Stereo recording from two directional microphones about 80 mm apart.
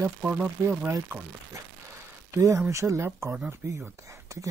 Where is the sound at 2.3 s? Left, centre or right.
Right.